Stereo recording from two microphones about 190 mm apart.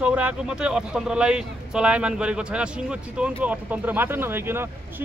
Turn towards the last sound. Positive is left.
turn(degrees=-10)  # may be behind; listen again after turning